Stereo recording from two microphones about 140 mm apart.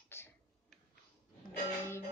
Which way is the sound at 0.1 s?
15° left (ahead or behind).